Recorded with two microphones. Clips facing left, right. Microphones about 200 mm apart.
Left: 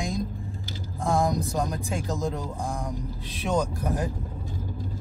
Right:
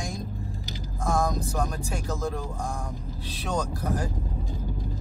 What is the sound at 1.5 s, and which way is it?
Speech, 15° left (ahead or behind).